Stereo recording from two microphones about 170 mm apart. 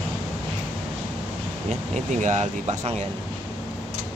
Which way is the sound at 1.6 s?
45° right (ahead or behind).